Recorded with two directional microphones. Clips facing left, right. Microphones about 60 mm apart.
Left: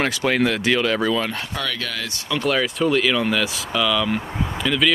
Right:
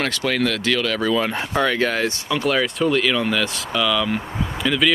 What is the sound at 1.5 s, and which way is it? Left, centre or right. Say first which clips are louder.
Speech: right 8 dB; right.